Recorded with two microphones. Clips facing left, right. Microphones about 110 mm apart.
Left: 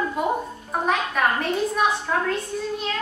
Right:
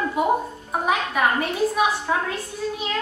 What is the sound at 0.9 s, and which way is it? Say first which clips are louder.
A woman's voice: right 1 dB; 5° right (ahead or behind).